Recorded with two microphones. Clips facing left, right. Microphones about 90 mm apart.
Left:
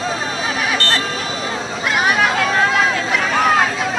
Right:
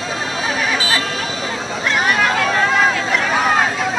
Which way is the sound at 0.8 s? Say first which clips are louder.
Even; 75° left (ahead or behind).